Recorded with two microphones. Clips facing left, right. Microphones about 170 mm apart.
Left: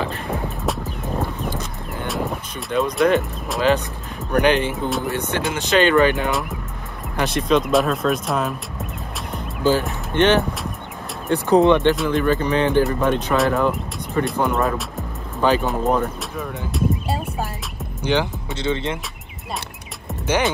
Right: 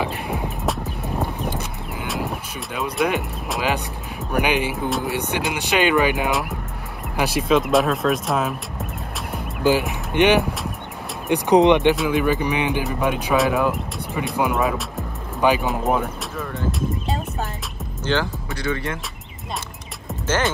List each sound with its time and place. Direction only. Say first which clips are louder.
0.0 s music: even; 15° right (ahead or behind)
0.8 s vehicle: left 1 dB; 20° right (ahead or behind)
2.0 s vehicle: left 2 dB; centre (ahead or behind)
4.3 s speech: left 4 dB; 10° right (ahead or behind)
6.2 s speech: even; centre (ahead or behind)
9.6 s speech: even; 15° right (ahead or behind)
11.9 s speech: even; centre (ahead or behind)
12.3 s speech: left 2 dB; 15° right (ahead or behind)
16.7 s a sound: left 3 dB; centre (ahead or behind)
18.0 s speech: left 2 dB; 15° left (ahead or behind)